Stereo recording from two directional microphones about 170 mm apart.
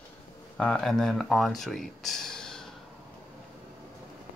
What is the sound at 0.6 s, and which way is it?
Speech, 5° left (ahead or behind).